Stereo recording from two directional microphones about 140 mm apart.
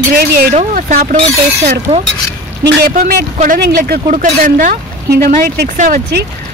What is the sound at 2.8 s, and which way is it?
Speech, 90° right.